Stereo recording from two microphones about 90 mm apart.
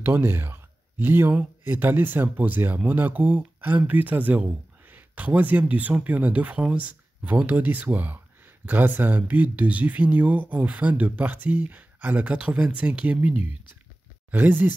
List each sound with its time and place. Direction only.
0.0 s speech: 25° right (ahead or behind)
14.3 s speech: 20° right (ahead or behind)